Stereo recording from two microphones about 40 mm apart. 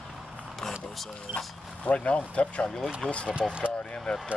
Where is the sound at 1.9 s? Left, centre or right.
Left.